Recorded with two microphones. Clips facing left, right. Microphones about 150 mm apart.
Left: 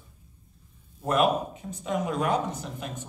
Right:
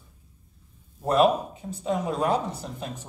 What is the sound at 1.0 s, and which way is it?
Speech, 30° right (ahead or behind).